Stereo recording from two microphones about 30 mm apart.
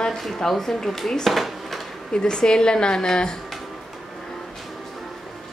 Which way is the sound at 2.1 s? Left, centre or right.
Left.